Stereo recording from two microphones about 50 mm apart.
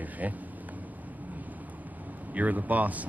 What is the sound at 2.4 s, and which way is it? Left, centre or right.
Speech, right.